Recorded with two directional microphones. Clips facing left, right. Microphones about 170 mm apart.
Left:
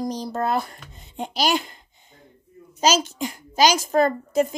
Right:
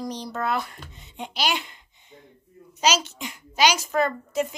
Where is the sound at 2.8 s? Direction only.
45° left (ahead or behind).